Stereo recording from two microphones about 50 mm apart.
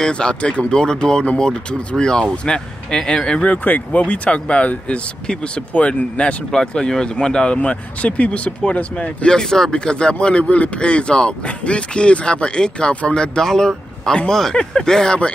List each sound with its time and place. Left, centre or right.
0.0 s speech: centre
3.5 s speech: left; by 7.5 s centre
7.5 s speech: left